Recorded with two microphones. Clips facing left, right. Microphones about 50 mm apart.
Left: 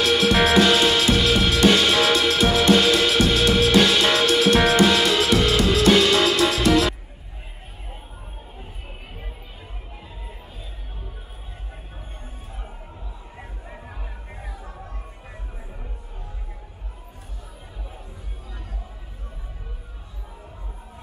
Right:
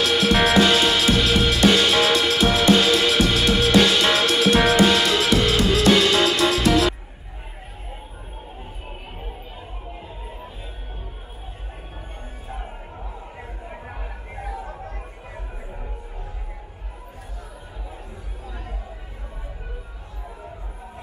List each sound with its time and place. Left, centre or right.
0.0 s music: centre
13.7 s music: right
13.9 s music: right